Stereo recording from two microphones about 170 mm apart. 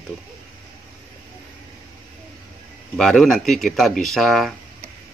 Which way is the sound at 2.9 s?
Centre (ahead or behind).